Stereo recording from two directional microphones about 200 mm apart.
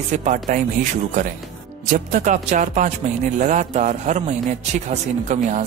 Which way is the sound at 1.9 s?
40° right (ahead or behind).